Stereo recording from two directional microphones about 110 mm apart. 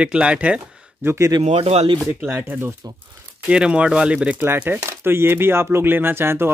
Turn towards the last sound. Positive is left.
turn(degrees=-20)  # may be behind; listen again after turning